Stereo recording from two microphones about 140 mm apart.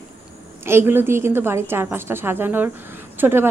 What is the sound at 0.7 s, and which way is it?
A woman's voice, 15° right (ahead or behind).